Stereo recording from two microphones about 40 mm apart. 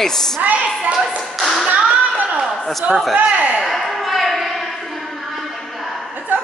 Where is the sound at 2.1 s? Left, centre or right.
Right.